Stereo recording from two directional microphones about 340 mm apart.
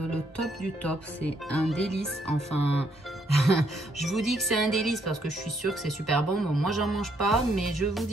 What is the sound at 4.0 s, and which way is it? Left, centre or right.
Speech, centre.